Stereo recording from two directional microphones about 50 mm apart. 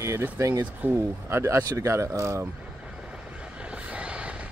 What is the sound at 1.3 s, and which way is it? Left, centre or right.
Speech, right.